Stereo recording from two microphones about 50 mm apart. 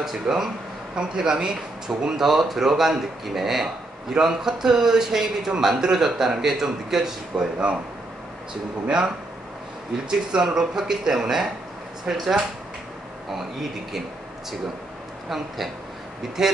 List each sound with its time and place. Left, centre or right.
0.0 s a man's voice: centre
8.8 s a man's voice: centre
15.2 s a man's voice: centre